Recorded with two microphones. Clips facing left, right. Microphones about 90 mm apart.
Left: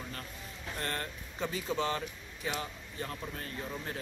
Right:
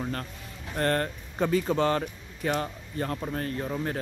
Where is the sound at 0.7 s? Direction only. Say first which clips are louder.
Right 12 dB; 50° right (ahead or behind).